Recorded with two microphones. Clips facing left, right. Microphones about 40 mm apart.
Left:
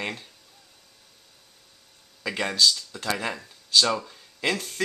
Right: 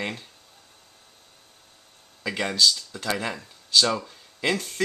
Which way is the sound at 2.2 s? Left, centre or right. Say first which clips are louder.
Even; centre.